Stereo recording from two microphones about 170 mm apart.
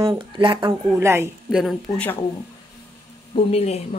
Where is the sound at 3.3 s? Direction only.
35° left (ahead or behind).